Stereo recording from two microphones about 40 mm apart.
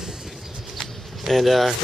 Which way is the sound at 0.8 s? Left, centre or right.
Centre.